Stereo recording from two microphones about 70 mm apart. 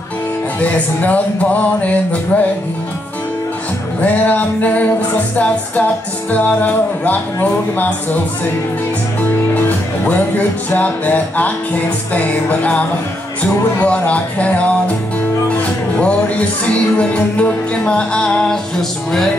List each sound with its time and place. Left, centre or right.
0.6 s speech: left
4.0 s speech: left
9.6 s music: left
12.1 s speech: left
16.0 s music: centre